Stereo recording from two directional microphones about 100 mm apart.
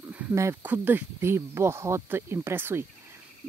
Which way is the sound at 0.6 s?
20° right (ahead or behind).